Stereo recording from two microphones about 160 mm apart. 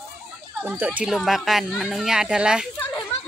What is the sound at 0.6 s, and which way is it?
A child's voice, 10° right (ahead or behind).